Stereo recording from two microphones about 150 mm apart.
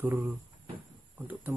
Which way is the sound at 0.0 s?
10° right (ahead or behind).